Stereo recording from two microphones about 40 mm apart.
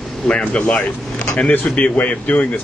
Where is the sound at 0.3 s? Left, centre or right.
Left.